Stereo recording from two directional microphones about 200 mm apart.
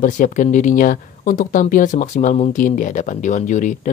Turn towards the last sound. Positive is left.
turn(degrees=40)  # may be behind; listen again after turning